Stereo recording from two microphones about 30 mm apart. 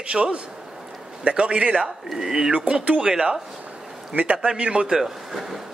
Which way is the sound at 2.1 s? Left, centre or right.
Centre.